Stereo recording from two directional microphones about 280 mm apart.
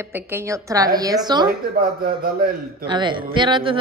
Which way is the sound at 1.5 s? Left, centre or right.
Right.